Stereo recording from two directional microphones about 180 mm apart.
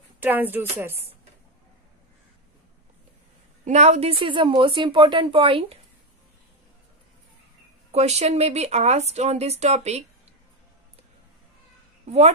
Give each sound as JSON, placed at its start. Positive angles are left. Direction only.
{"t": 0.2, "sound": "a woman's voice", "side_deg": -10}
{"t": 3.6, "sound": "a woman's voice", "side_deg": -40}
{"t": 7.9, "sound": "speech", "side_deg": -35}